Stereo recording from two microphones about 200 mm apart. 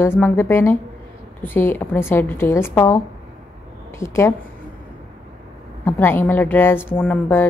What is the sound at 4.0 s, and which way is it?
Speech, 15° left (ahead or behind).